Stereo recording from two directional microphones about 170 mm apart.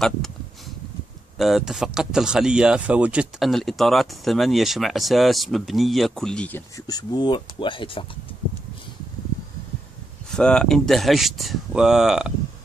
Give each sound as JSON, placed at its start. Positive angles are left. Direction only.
{"t": 1.4, "sound": "speech", "side_deg": 0}
{"t": 6.9, "sound": "speech", "side_deg": 25}
{"t": 10.3, "sound": "speech", "side_deg": 5}